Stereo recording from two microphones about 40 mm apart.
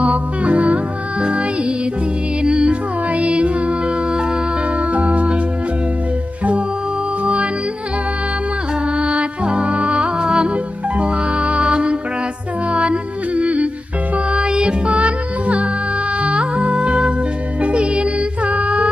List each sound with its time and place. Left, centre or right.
0.0 s music: right
4.1 s music: right
4.7 s music: right
8.9 s music: right